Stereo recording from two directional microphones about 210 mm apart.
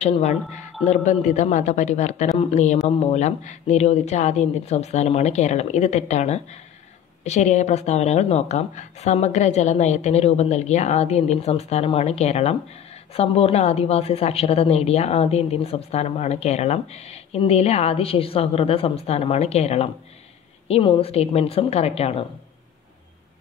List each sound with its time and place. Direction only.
0.0 s a woman's voice: 30° left (ahead or behind)